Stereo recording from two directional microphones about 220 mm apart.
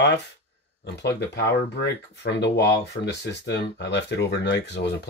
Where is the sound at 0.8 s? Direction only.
50° left (ahead or behind).